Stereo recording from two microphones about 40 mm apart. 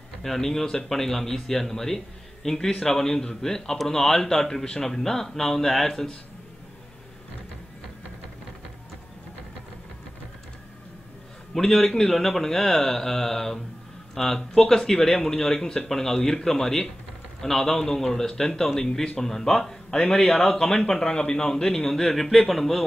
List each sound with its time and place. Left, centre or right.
0.2 s speech: centre
11.5 s speech: centre
18.8 s speech: centre